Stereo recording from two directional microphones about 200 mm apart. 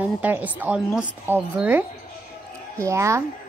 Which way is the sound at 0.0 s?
10° right (ahead or behind).